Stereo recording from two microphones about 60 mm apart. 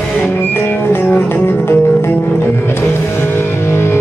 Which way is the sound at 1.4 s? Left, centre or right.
Left.